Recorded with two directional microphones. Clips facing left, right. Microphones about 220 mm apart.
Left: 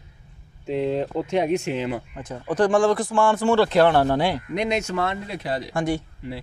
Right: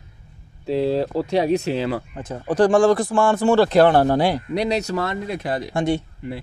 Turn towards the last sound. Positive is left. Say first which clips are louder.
# right 3 dB
turn(degrees=-50)  # may be behind; listen again after turning